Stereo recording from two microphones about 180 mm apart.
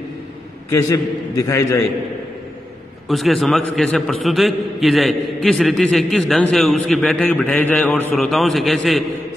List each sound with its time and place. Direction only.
0.7 s a man's voice: 15° left (ahead or behind)
3.1 s a man's voice: centre (ahead or behind)